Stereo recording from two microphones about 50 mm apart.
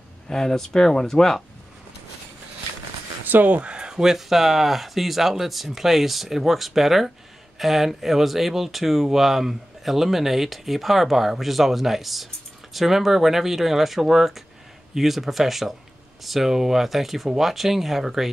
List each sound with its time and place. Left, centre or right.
0.3 s speech: centre
3.3 s a sound: right
3.9 s speech: centre